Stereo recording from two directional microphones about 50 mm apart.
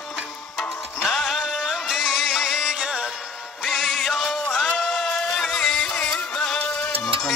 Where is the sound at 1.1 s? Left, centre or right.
Centre.